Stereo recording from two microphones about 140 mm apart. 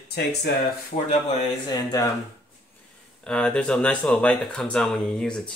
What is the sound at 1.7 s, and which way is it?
Speech, 25° left (ahead or behind).